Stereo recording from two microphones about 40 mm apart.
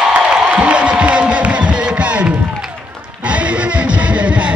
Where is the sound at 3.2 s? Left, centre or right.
Right.